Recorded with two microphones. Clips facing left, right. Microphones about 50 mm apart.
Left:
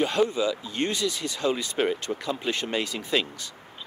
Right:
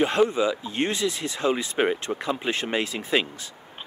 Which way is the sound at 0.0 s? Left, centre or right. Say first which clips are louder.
Right 3 dB; right.